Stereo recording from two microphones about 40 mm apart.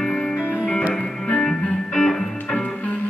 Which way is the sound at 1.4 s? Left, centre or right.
Centre.